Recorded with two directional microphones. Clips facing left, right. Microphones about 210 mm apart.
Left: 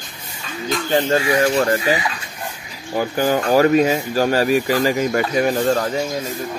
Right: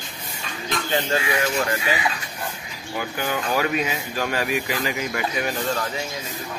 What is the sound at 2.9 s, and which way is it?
Speech, 40° left (ahead or behind).